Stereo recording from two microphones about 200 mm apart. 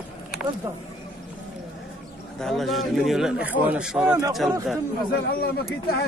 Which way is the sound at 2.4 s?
Centre (ahead or behind).